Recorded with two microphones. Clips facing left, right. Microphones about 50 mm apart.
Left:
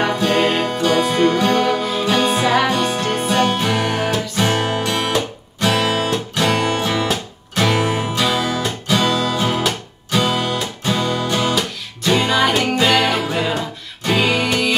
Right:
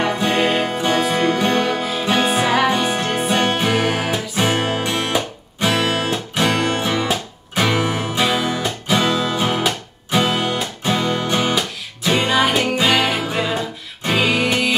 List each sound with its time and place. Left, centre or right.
0.1 s music: centre
0.4 s music: centre
3.3 s music: right
3.7 s music: centre
11.5 s music: centre